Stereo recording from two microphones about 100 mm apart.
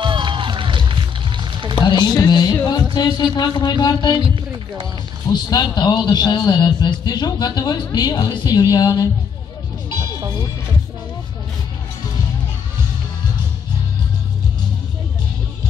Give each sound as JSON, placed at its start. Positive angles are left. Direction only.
{"t": 0.0, "sound": "run", "side_deg": -55}
{"t": 1.8, "sound": "speech", "side_deg": 50}
{"t": 2.1, "sound": "music", "side_deg": 45}
{"t": 2.9, "sound": "a sound", "side_deg": 45}
{"t": 3.3, "sound": "a man's voice", "side_deg": 45}
{"t": 5.3, "sound": "a man's voice", "side_deg": 45}